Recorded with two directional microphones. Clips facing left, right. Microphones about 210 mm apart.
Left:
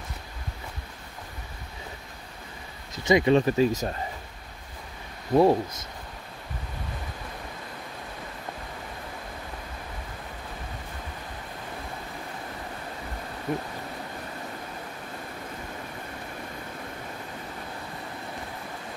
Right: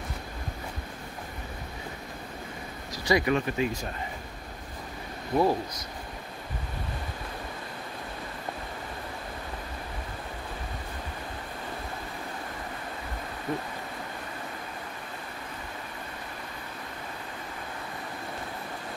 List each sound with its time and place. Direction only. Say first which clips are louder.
3.0 s speech: left 5 dB; 25° left (ahead or behind)
5.3 s speech: left 5 dB; 25° left (ahead or behind)